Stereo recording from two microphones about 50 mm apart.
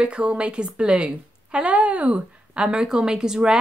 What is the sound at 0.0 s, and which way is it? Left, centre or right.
A woman's voice, right.